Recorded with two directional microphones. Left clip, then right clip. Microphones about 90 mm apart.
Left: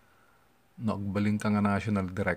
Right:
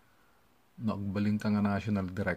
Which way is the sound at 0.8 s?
40° left (ahead or behind).